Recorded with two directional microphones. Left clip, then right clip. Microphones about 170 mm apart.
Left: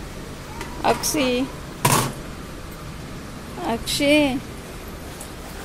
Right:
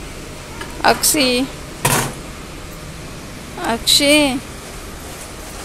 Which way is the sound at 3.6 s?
10° left (ahead or behind).